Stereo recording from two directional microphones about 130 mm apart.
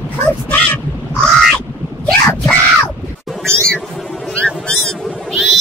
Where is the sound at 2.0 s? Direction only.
10° left (ahead or behind).